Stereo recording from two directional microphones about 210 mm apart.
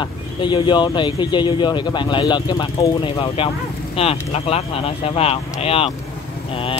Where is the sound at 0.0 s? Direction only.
20° left (ahead or behind).